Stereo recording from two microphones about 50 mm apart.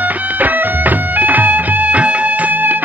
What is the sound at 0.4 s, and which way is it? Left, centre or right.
Music, right.